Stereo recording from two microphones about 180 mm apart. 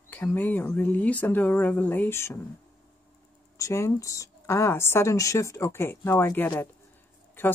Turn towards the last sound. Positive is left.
turn(degrees=10)  # may be behind; listen again after turning